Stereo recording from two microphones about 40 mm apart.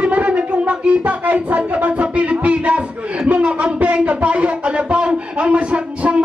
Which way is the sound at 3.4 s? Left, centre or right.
Right.